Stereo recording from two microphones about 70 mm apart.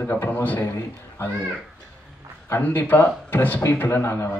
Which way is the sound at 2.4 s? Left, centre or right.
Left.